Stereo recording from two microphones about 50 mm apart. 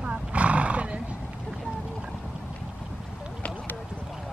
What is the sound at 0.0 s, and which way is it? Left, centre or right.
Horse, right.